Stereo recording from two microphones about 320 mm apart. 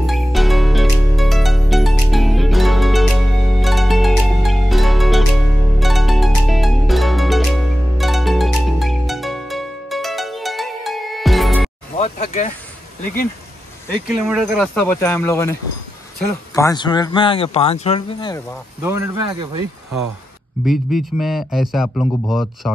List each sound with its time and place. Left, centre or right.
0.0 s music: centre
12.0 s a sound: left
14.0 s speech: centre
18.8 s speech: centre
20.6 s speech: centre